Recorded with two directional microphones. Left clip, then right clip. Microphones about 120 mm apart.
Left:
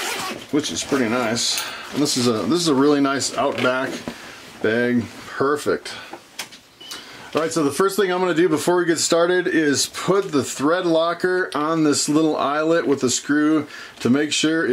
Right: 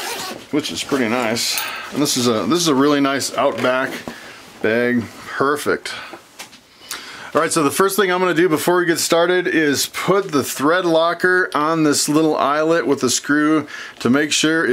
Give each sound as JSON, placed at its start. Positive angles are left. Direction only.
{"t": 0.5, "sound": "speech", "side_deg": -25}
{"t": 7.4, "sound": "speech", "side_deg": -40}